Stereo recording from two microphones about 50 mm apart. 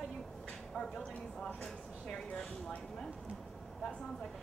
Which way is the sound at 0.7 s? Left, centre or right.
Centre.